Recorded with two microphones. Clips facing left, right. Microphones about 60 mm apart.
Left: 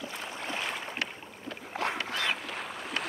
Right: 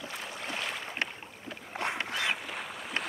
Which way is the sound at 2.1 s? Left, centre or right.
Centre.